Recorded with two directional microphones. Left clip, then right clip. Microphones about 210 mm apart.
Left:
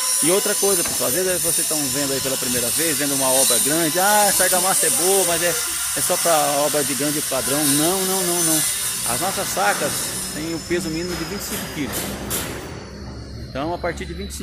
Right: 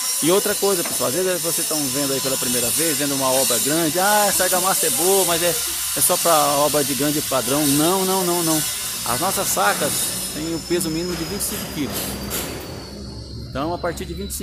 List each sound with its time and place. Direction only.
0.3 s speech: 15° right (ahead or behind)
13.6 s speech: 10° right (ahead or behind)